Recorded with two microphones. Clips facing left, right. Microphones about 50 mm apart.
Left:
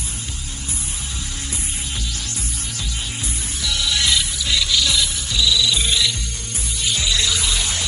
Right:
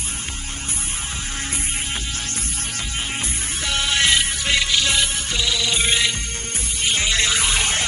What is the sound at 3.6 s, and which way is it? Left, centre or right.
Music, right.